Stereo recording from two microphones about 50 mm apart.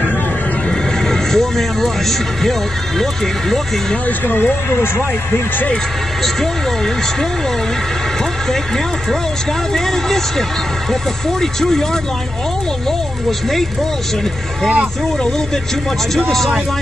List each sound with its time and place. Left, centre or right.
0.7 s speech: centre
4.3 s speech: left
8.5 s speech: centre
16.2 s speech: centre